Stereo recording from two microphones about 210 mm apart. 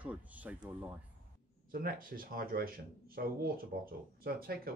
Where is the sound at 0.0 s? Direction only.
5° right (ahead or behind).